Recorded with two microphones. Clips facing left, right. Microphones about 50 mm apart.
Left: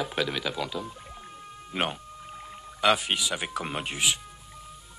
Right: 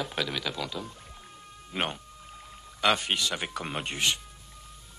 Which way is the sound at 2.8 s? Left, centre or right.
Centre.